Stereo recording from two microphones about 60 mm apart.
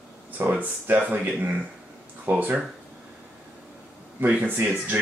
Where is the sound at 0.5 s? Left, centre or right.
Right.